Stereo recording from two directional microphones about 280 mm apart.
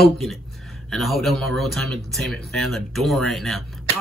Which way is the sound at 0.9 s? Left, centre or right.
Centre.